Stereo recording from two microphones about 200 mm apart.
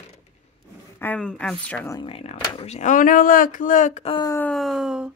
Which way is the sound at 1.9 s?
30° left (ahead or behind).